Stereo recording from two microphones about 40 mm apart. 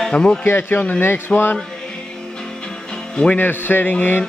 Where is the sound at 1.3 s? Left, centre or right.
Left.